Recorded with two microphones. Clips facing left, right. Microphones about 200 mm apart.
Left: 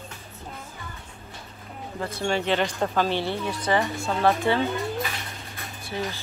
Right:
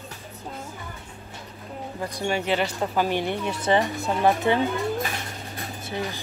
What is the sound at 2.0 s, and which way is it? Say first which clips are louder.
Speech: left 1 dB; 15° right (ahead or behind).